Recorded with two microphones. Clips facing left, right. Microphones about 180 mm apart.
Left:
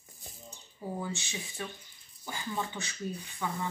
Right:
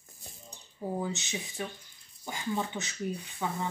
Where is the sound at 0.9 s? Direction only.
20° right (ahead or behind).